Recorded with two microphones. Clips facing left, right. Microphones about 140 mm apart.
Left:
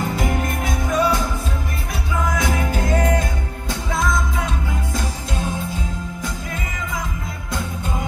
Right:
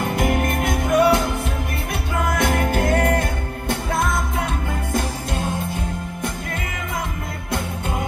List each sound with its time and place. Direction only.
0.0 s music: 55° right (ahead or behind)
4.9 s jingle bell: 55° right (ahead or behind)